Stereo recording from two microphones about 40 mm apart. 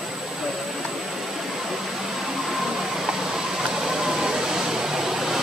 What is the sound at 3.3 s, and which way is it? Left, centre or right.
Vehicle, centre.